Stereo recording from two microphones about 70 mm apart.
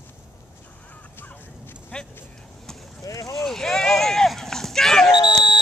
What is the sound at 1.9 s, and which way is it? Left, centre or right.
Speech, left.